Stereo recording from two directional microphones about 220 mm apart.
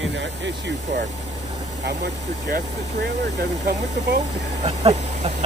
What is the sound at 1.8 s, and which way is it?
Speech, 50° right (ahead or behind).